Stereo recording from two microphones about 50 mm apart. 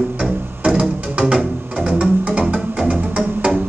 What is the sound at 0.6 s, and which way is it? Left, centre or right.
Music, centre.